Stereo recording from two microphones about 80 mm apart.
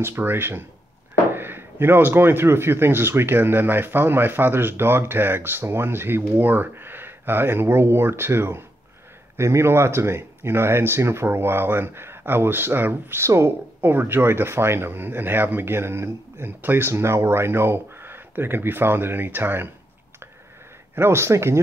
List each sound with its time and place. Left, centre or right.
0.0 s speech: right
20.9 s speech: right